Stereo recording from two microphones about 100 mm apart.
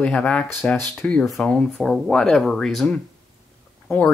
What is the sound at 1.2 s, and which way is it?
Speech, 5° left (ahead or behind).